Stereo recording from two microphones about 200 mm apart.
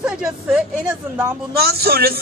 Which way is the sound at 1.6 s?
50° right (ahead or behind).